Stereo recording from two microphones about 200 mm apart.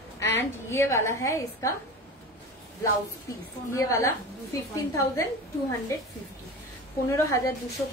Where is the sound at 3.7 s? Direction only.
15° left (ahead or behind).